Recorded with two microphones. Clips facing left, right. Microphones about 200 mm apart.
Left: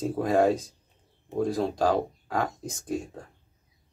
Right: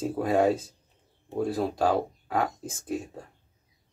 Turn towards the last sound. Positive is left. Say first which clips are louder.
# left 1 dB
turn(degrees=-5)  # may be behind; listen again after turning